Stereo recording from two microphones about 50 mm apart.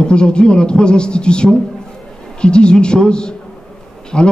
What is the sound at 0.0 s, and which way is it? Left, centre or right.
A man's voice, centre.